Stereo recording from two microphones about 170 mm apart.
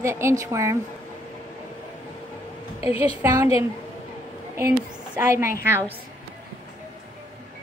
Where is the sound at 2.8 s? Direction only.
35° left (ahead or behind).